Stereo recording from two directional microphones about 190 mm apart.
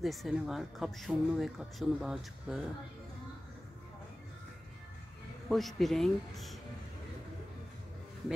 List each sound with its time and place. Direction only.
0.0 s speech: centre (ahead or behind)
5.5 s speech: centre (ahead or behind)